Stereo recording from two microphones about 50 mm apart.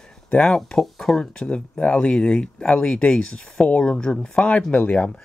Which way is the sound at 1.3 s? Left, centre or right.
Left.